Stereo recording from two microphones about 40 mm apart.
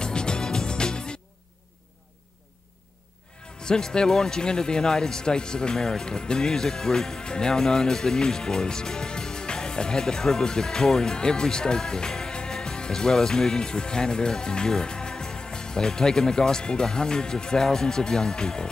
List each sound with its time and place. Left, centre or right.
0.0 s music: left
3.6 s speech: centre